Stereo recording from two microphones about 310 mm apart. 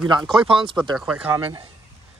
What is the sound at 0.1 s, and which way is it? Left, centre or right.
Speech, centre.